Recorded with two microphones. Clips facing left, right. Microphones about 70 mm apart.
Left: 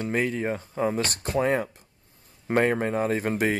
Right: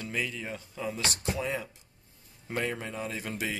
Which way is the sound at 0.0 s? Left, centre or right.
Left.